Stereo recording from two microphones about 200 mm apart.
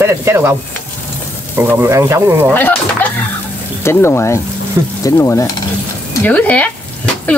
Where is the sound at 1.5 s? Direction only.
10° right (ahead or behind).